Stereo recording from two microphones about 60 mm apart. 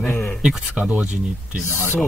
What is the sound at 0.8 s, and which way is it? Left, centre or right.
Speech, right.